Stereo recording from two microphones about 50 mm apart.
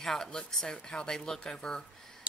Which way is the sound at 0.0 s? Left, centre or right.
Centre.